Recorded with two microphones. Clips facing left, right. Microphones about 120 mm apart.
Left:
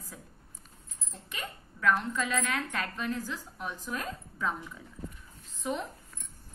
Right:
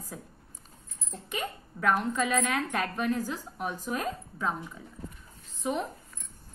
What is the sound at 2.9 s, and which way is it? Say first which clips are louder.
Speech: right 5 dB; 45° right (ahead or behind).